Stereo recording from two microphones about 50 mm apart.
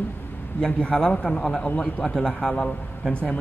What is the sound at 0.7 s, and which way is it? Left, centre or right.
A man's voice, left.